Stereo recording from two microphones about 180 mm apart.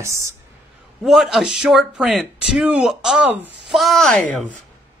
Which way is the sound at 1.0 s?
Centre (ahead or behind).